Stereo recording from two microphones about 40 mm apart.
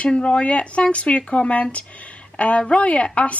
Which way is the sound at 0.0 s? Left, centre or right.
Left.